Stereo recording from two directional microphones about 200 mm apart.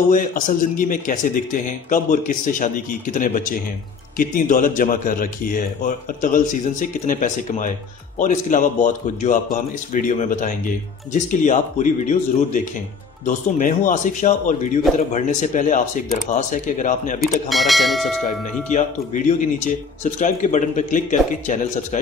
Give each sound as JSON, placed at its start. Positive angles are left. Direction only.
{"t": 0.1, "sound": "speech", "side_deg": 40}
{"t": 17.2, "sound": "bell", "side_deg": 0}
{"t": 18.7, "sound": "speech", "side_deg": 40}